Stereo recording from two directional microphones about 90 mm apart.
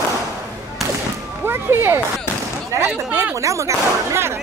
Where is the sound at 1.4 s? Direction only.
25° right (ahead or behind).